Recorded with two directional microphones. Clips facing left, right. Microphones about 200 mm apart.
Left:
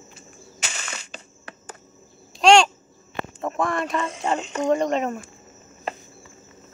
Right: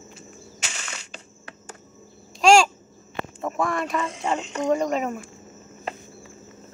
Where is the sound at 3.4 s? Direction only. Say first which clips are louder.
Left 1 dB; centre (ahead or behind).